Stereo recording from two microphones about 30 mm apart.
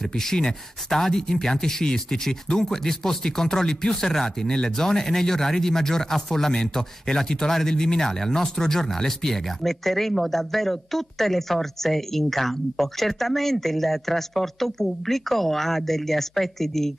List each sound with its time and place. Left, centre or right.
0.3 s speech: centre